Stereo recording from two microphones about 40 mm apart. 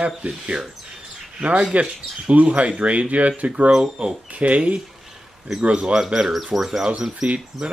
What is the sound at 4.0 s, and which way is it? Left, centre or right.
Speech, right.